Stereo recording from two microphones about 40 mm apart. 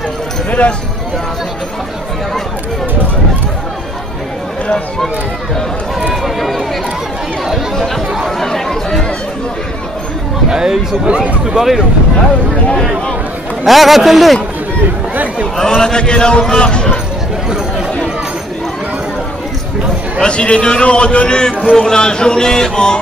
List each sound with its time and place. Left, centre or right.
0.5 s speech: left
8.4 s a man's voice: centre
10.5 s speech: centre
13.7 s a man's voice: centre
15.5 s a man's voice: centre
20.2 s a man's voice: left